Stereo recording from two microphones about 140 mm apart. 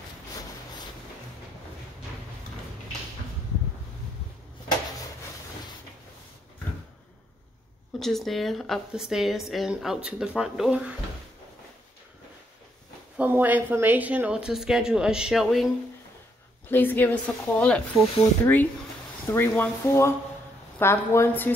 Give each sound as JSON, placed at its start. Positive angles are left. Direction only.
{"t": 8.0, "sound": "speech", "side_deg": 0}
{"t": 13.2, "sound": "speech", "side_deg": -15}
{"t": 16.7, "sound": "a woman's voice", "side_deg": 15}